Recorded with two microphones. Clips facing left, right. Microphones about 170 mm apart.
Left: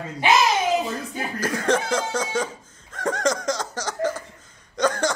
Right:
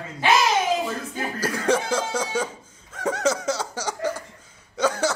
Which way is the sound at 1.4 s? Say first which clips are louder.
Even; 10° right (ahead or behind).